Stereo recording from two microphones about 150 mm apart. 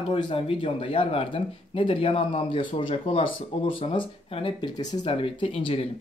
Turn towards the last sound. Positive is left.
turn(degrees=40)  # may be behind; listen again after turning